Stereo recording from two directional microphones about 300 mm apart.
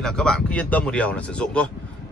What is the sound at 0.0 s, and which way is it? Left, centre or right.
A man's voice, centre.